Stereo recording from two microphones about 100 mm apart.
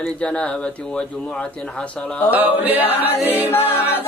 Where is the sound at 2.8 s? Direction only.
70° left (ahead or behind).